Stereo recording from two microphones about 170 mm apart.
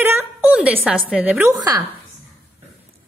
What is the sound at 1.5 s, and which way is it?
Speech, 20° right (ahead or behind).